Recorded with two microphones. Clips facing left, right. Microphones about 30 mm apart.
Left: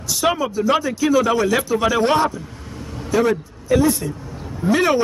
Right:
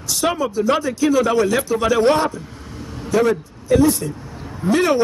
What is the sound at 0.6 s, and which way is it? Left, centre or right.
A man's voice, centre.